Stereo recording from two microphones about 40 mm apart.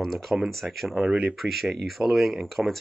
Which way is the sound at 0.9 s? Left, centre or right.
Right.